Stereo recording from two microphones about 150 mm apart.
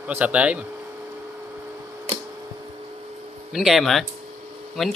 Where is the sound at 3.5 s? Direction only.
Centre (ahead or behind).